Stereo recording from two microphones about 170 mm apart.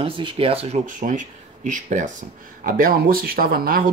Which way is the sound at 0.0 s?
30° right (ahead or behind).